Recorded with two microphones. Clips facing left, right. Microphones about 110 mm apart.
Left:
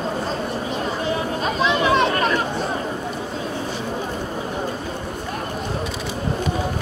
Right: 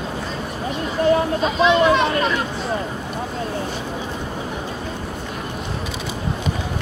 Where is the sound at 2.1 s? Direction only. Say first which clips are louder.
Even; 45° left (ahead or behind).